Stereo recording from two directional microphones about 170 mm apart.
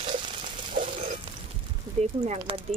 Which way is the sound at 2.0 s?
40° right (ahead or behind).